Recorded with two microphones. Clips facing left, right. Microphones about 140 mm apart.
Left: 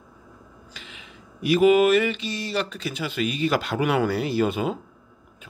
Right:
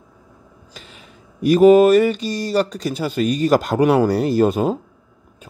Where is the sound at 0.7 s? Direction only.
40° right (ahead or behind).